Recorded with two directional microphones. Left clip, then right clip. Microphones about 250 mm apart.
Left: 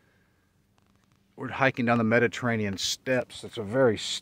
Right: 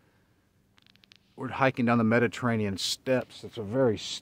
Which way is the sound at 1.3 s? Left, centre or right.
Centre.